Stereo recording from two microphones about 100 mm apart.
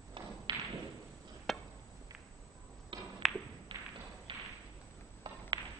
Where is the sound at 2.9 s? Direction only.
55° right (ahead or behind).